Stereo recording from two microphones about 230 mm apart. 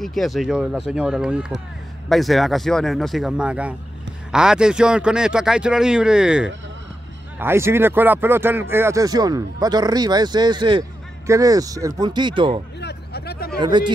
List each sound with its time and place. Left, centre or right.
0.0 s a man's voice: centre; by 12.6 s right
12.8 s a sound: left
13.6 s speech: centre